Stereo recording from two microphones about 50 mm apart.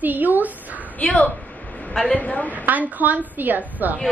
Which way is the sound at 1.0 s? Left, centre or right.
Left.